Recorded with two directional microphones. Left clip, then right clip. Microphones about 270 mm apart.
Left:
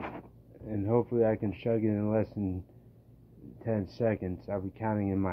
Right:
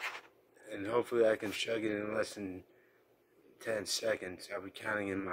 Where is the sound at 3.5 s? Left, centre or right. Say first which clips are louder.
Left 3 dB; right.